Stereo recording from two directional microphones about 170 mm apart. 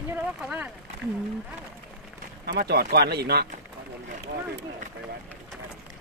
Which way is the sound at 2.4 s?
65° right (ahead or behind).